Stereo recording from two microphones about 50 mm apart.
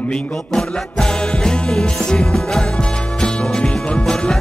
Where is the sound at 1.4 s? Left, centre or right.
Centre.